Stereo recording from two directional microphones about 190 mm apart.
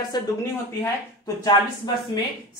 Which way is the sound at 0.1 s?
20° left (ahead or behind).